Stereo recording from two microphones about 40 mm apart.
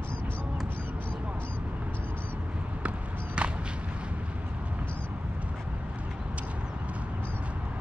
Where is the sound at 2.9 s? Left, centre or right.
Right.